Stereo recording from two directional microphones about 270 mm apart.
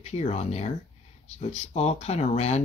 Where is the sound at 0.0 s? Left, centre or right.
Left.